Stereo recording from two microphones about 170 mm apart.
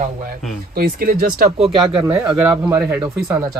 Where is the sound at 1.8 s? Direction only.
15° right (ahead or behind).